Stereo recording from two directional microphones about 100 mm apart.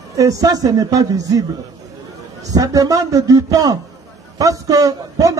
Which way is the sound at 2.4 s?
35° right (ahead or behind).